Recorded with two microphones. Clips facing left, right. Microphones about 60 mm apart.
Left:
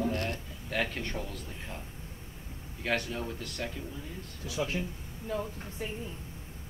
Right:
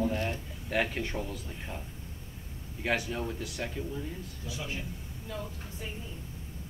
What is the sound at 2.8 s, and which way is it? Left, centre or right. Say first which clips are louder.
A man's voice: right 1 dB; centre.